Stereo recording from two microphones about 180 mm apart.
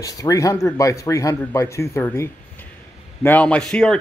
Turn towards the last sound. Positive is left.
turn(degrees=5)  # may be behind; listen again after turning